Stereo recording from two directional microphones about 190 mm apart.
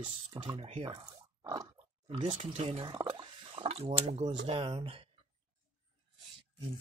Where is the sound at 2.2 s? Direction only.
35° right (ahead or behind).